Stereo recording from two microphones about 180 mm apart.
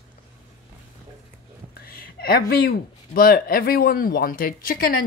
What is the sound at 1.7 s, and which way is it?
Speech, 55° left (ahead or behind).